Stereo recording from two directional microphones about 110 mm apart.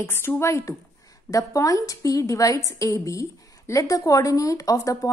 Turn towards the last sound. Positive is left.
turn(degrees=30)  # may be behind; listen again after turning